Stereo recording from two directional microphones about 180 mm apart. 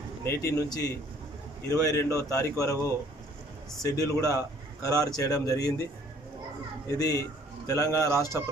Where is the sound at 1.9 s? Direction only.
15° left (ahead or behind).